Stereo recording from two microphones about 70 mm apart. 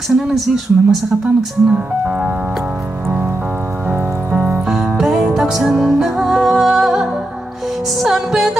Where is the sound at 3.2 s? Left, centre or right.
Right.